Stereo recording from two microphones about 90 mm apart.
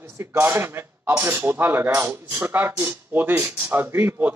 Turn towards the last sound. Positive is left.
turn(degrees=-25)  # may be behind; listen again after turning